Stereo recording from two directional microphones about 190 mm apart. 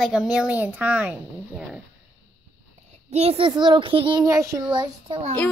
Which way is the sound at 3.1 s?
30° right (ahead or behind).